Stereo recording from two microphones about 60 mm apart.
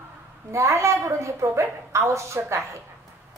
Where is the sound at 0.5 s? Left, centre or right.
Right.